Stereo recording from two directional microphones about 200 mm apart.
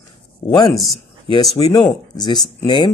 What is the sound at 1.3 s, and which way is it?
Speech, 25° left (ahead or behind).